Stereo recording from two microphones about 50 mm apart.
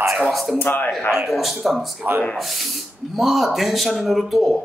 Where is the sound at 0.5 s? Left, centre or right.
Left.